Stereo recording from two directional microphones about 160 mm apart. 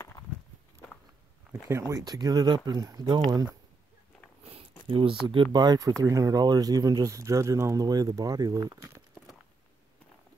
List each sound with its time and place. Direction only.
1.5 s speech: 15° right (ahead or behind)
4.4 s a sound: 40° right (ahead or behind)
5.2 s speech: 30° right (ahead or behind)